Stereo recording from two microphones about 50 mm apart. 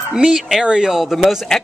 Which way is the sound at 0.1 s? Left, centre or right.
Centre.